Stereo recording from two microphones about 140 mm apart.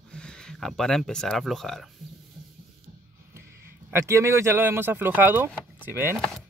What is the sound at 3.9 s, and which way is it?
Speech, 20° right (ahead or behind).